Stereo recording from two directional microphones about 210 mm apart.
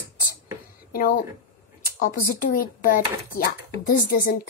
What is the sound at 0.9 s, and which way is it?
Speech, 45° left (ahead or behind).